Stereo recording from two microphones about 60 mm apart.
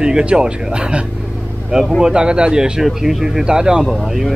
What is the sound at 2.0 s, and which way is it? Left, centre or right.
Speech, centre.